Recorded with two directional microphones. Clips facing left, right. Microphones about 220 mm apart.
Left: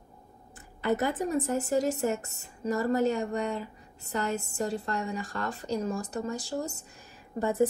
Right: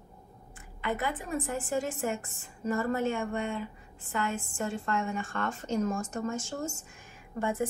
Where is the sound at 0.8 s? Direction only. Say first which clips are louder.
Left 6 dB; 45° left (ahead or behind).